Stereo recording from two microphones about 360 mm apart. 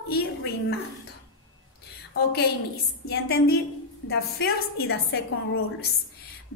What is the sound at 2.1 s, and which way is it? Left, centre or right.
A woman's voice, left.